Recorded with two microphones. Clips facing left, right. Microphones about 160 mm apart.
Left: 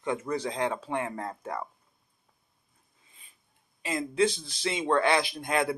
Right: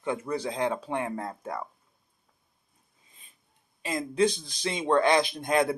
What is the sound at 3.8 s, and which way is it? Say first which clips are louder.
A man's voice: right 1 dB; 15° right (ahead or behind).